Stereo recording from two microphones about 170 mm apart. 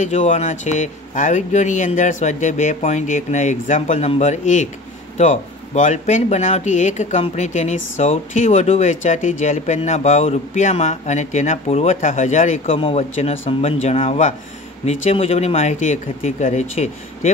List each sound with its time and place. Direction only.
0.0 s speech: 45° left (ahead or behind)